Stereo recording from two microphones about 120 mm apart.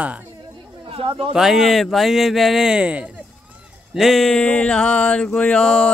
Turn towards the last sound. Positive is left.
turn(degrees=5)  # may be behind; listen again after turning